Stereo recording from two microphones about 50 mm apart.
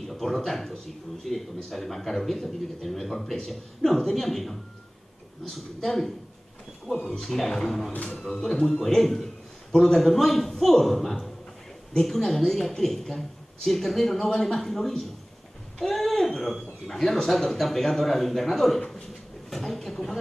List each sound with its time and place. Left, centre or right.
0.0 s a man's voice: centre
7.9 s a man's voice: left
8.2 s a man's voice: centre